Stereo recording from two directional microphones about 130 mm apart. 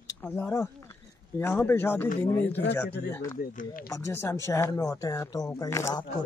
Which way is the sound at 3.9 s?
20° left (ahead or behind).